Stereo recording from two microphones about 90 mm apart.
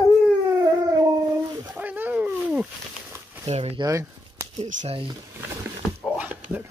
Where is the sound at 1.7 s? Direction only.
20° right (ahead or behind).